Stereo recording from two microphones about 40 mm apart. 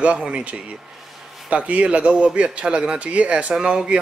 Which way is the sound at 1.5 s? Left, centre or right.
Right.